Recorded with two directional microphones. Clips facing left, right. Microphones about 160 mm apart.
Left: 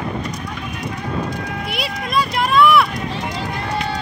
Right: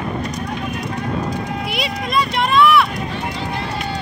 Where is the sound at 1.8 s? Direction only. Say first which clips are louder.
Even; centre (ahead or behind).